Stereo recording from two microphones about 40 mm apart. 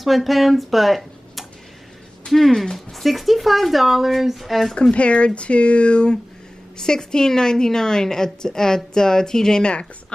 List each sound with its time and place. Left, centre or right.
0.0 s speech: centre
4.9 s speech: left
6.8 s a woman's voice: centre
9.7 s speech: left